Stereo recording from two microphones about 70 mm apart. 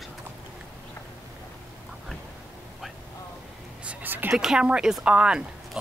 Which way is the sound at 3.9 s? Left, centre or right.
Right.